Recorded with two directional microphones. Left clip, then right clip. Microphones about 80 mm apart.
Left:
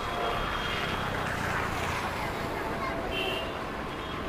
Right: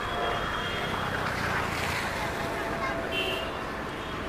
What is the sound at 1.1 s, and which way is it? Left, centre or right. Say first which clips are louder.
Vehicle: right 2 dB; right.